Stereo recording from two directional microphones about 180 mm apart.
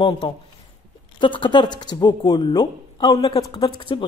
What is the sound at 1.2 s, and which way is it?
Speech, 25° left (ahead or behind).